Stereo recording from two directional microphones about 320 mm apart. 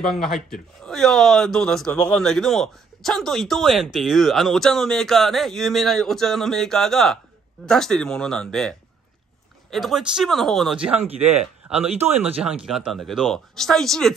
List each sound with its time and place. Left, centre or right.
0.0 s speech: centre
11.9 s speech: centre
12.2 s speech: centre